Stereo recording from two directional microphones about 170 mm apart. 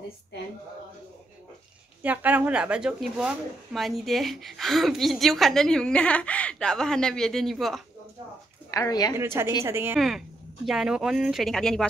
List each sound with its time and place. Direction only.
2.0 s speech: 10° right (ahead or behind)
8.6 s speech: 20° left (ahead or behind)
9.1 s a woman's voice: 15° right (ahead or behind)
9.9 s speech: centre (ahead or behind)